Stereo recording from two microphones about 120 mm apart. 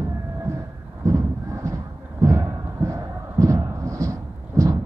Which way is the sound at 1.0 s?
25° right (ahead or behind).